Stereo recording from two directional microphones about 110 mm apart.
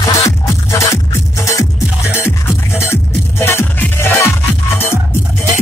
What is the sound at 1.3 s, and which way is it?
Music, 30° left (ahead or behind).